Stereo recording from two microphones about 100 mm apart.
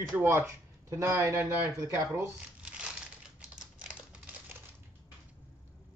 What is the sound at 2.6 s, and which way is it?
Crumpling, 10° right (ahead or behind).